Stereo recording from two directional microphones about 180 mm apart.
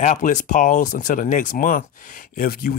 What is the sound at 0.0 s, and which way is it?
Speech, 45° left (ahead or behind).